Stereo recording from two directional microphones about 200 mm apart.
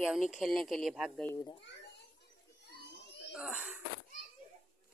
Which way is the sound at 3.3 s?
5° right (ahead or behind).